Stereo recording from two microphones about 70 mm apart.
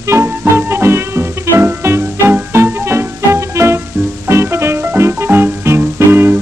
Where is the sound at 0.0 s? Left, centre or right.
Right.